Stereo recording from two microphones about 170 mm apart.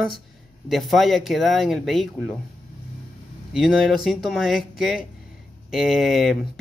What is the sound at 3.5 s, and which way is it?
Speech, centre (ahead or behind).